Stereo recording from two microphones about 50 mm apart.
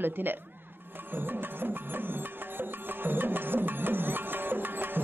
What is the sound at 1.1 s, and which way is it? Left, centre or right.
Music, right.